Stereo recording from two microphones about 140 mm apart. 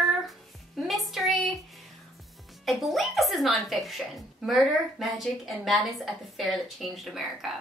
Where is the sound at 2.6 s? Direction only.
Centre (ahead or behind).